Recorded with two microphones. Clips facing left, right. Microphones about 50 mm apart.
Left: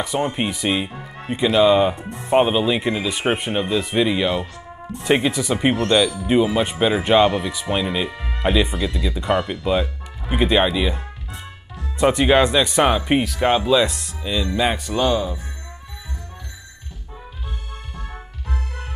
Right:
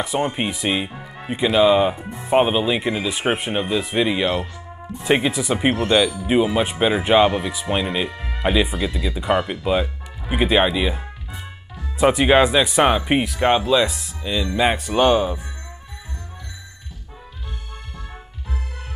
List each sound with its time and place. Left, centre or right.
0.0 s speech: centre
15.0 s speech: right